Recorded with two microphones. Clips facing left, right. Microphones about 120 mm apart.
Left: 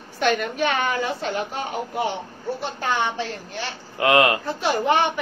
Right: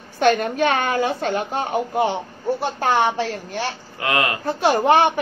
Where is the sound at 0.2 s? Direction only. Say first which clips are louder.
Right 4 dB; 50° right (ahead or behind).